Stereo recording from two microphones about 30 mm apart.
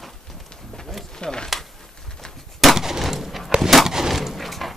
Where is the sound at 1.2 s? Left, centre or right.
Left.